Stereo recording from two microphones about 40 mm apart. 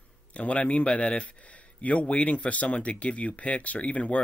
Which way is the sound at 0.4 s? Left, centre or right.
Left.